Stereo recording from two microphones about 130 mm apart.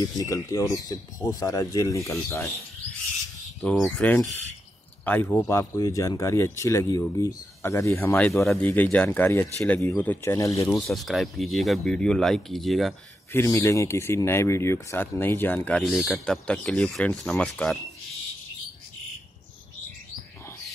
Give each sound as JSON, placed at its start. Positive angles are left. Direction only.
{"t": 0.2, "sound": "speech", "side_deg": 25}
{"t": 3.6, "sound": "speech", "side_deg": 5}
{"t": 10.7, "sound": "speech", "side_deg": 0}
{"t": 13.3, "sound": "speech", "side_deg": 20}
{"t": 15.8, "sound": "speech", "side_deg": 0}